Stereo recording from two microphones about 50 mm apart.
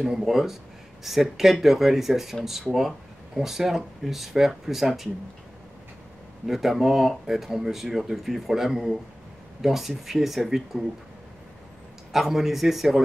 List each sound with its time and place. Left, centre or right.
0.0 s speech: centre
3.3 s speech: centre
6.4 s speech: centre
12.1 s speech: centre